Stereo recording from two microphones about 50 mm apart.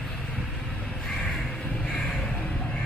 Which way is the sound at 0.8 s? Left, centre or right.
Centre.